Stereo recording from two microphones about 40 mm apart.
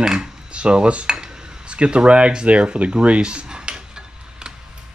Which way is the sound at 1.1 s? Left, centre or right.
Centre.